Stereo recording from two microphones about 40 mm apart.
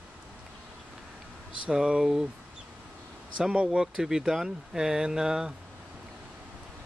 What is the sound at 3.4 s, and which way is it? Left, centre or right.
Speech, right.